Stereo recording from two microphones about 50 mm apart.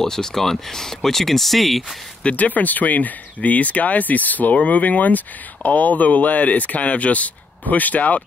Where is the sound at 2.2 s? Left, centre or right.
Left.